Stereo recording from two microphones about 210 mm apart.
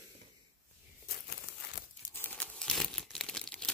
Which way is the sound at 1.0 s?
50° left (ahead or behind).